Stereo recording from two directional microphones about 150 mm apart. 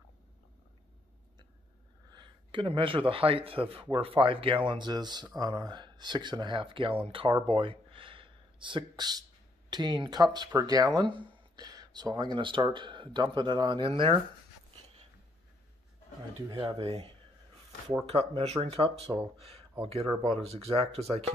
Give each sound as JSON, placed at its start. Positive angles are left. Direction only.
{"t": 2.1, "sound": "a man's voice", "side_deg": -30}
{"t": 16.4, "sound": "speech", "side_deg": -30}